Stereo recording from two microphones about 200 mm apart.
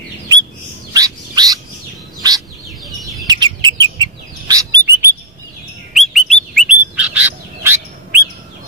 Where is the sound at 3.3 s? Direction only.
20° right (ahead or behind).